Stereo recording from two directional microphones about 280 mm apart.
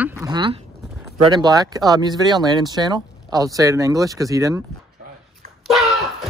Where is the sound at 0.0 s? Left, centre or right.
Centre.